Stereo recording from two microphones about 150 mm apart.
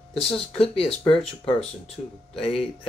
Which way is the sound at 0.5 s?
40° left (ahead or behind).